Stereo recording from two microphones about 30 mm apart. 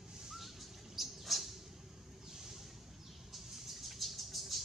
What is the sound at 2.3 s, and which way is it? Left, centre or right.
Vehicle, centre.